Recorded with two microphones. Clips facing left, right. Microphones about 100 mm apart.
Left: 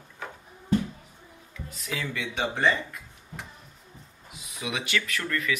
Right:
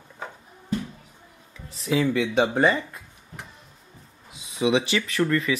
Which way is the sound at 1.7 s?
30° right (ahead or behind).